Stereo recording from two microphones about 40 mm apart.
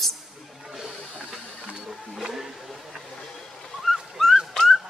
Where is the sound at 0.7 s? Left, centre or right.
Centre.